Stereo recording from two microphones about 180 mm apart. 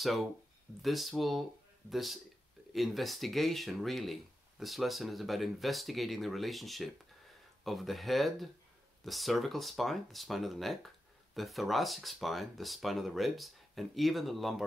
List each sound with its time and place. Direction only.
0.0 s speech: centre (ahead or behind)